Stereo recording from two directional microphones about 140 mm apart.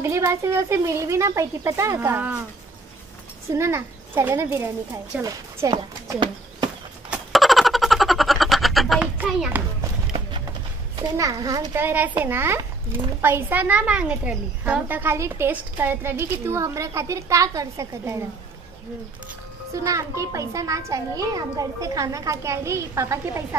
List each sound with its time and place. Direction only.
0.0 s a child's voice: 20° right (ahead or behind)
3.5 s a child's voice: 20° right (ahead or behind)
6.1 s a sound: 35° right (ahead or behind)
7.1 s a sound: centre (ahead or behind)
9.2 s children playing: 10° right (ahead or behind)
11.0 s a child's voice: 25° right (ahead or behind)
19.7 s a child's voice: 25° right (ahead or behind)